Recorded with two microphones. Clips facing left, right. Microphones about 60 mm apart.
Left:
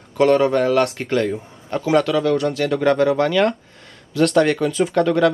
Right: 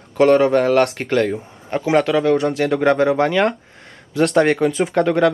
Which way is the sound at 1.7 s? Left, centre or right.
Right.